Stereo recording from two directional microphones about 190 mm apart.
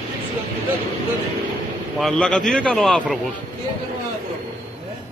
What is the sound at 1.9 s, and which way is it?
A man's voice, centre (ahead or behind).